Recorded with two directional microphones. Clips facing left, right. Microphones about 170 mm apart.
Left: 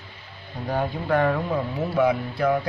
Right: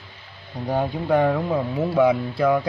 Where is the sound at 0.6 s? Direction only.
20° right (ahead or behind).